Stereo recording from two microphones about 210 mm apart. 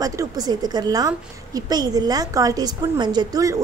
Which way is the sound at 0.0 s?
15° right (ahead or behind).